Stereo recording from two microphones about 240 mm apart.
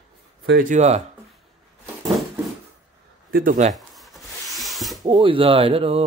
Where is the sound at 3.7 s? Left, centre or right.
Centre.